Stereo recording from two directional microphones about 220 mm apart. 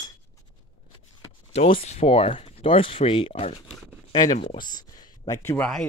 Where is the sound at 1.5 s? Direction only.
25° left (ahead or behind).